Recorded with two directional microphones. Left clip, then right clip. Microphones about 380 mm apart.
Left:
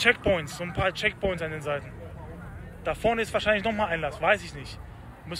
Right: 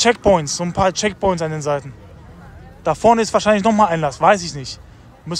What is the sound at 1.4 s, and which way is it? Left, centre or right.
Speech, right.